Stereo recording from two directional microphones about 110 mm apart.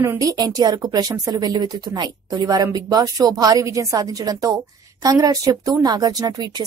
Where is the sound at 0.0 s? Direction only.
25° right (ahead or behind).